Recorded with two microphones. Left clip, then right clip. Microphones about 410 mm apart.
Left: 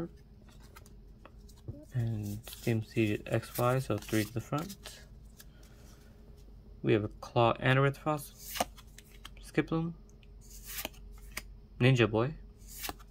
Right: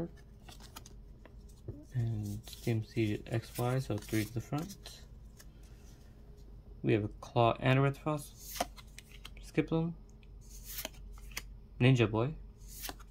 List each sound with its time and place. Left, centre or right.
0.5 s vehicle: right
2.0 s speech: centre
6.8 s speech: centre
11.8 s speech: centre